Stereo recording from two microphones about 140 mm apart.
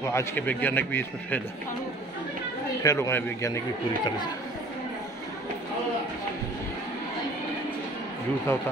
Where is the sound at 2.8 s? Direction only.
20° left (ahead or behind).